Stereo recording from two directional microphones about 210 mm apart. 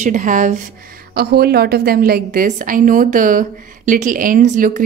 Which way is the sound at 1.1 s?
50° right (ahead or behind).